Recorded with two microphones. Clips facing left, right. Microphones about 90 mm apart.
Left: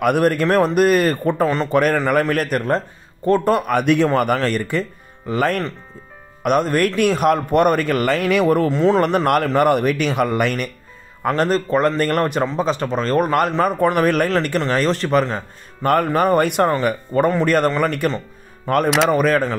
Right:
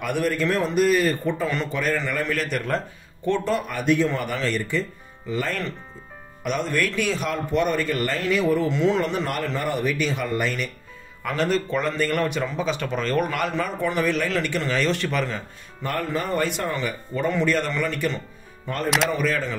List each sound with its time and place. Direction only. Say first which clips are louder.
0.0 s a man's voice: left 7 dB; 55° left (ahead or behind)
3.3 s speech: left 7 dB; 40° left (ahead or behind)
3.5 s a man's voice: left 5 dB; 65° left (ahead or behind)
8.7 s speech: left 5 dB; 40° left (ahead or behind)
9.0 s a man's voice: left 9 dB; 60° left (ahead or behind)
11.2 s a man's voice: left 5 dB; 45° left (ahead or behind)
15.8 s a man's voice: left 10 dB; 60° left (ahead or behind)